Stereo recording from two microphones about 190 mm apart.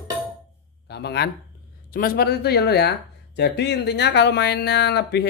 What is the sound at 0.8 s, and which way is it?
Speech, 60° left (ahead or behind).